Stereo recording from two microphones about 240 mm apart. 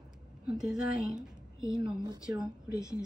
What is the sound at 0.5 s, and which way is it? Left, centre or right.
A woman's voice, centre.